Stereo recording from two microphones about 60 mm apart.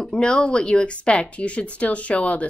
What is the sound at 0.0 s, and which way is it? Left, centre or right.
Speech, centre.